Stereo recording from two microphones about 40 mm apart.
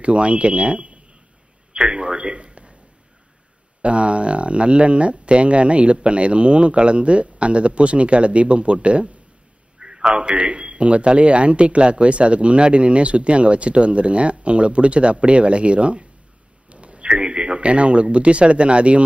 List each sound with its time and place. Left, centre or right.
0.0 s a man's voice: right
3.8 s a man's voice: right
9.8 s a sound: centre
10.1 s a man's voice: right